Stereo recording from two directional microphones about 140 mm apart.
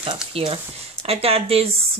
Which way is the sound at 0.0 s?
40° right (ahead or behind).